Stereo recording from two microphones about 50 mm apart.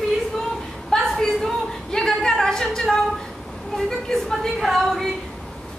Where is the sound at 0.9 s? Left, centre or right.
Centre.